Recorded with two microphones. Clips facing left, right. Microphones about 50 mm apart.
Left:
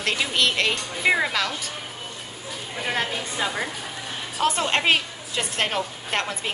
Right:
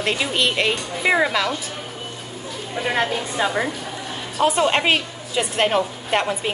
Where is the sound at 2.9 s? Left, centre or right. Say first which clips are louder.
Right 5 dB; centre.